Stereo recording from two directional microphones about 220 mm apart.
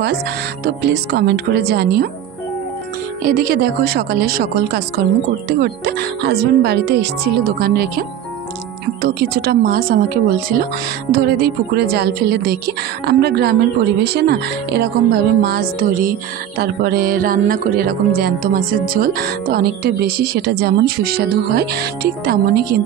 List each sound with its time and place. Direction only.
0.7 s speech: 50° right (ahead or behind)
3.3 s speech: 40° right (ahead or behind)
9.0 s speech: 45° right (ahead or behind)
15.4 s music: 45° right (ahead or behind)
16.5 s speech: 45° right (ahead or behind)